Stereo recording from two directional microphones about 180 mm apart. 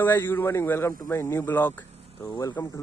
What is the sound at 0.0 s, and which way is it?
A man's voice, 10° left (ahead or behind).